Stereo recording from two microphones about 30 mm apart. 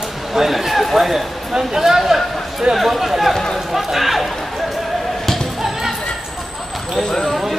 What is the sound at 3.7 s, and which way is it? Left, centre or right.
Speech, centre.